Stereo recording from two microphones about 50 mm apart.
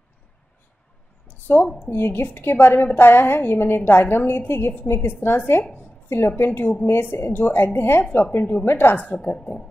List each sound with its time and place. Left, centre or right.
1.2 s a sound: left
2.0 s a woman's voice: left
6.0 s a woman's voice: left
9.0 s a woman's voice: left